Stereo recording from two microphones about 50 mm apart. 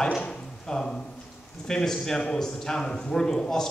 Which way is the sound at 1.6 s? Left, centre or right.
Centre.